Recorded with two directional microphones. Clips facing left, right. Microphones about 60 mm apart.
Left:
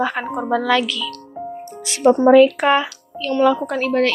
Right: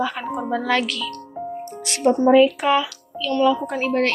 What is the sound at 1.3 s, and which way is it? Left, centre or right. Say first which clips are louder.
Music: even; centre.